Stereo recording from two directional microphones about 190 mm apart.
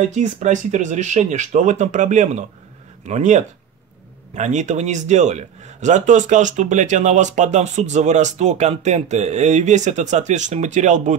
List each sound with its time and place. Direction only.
0.1 s a man's voice: 40° right (ahead or behind)